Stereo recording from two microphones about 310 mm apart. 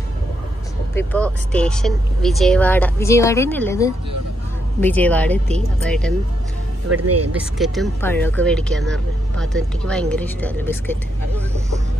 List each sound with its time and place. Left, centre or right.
0.9 s speech: centre
6.9 s speech: right
7.5 s speech: centre